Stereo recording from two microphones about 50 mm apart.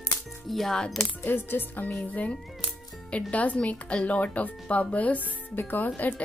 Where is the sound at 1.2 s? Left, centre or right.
Left.